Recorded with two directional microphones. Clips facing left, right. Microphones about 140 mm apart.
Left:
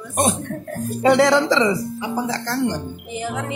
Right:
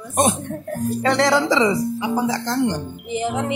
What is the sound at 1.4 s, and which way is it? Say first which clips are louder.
A woman's voice: even; 15° right (ahead or behind).